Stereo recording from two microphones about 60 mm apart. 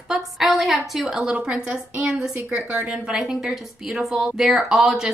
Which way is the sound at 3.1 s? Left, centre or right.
Centre.